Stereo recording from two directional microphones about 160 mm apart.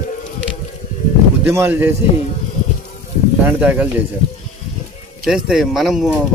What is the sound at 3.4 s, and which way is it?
Speech, 10° right (ahead or behind).